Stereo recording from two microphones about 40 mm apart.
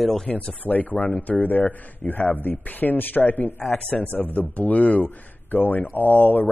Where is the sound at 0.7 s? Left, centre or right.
Left.